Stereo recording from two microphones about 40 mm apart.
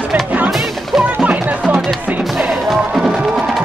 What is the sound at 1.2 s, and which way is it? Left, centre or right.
Music, right.